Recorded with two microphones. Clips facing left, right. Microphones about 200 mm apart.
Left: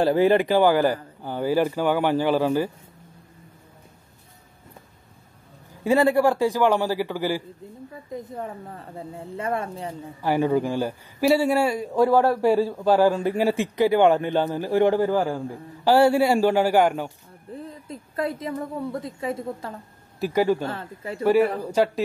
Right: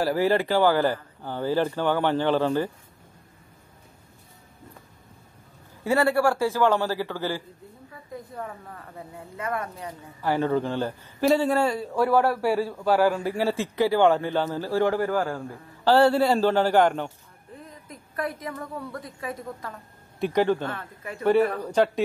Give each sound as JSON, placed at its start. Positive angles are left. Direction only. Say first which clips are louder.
{"t": 0.0, "sound": "a man's voice", "louder": "left 4 dB", "side_deg": 20}
{"t": 5.9, "sound": "a man's voice", "louder": "left 3 dB", "side_deg": 15}
{"t": 10.2, "sound": "a man's voice", "louder": "left 2 dB", "side_deg": 15}
{"t": 17.6, "sound": "a woman's voice", "louder": "left 7 dB", "side_deg": 30}
{"t": 20.2, "sound": "a man's voice", "louder": "left 1 dB", "side_deg": 5}
{"t": 20.6, "sound": "a woman's voice", "louder": "left 3 dB", "side_deg": 30}
{"t": 21.2, "sound": "a man's voice", "louder": "left 2 dB", "side_deg": 5}